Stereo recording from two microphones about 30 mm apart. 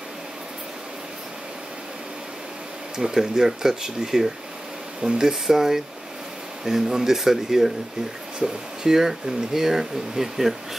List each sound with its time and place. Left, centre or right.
3.0 s speech: centre
8.8 s speech: centre